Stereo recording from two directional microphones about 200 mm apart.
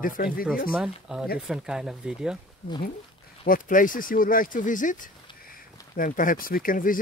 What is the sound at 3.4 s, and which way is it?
Speech, 45° left (ahead or behind).